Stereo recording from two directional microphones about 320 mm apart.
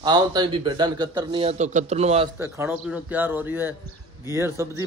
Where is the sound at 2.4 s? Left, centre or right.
Centre.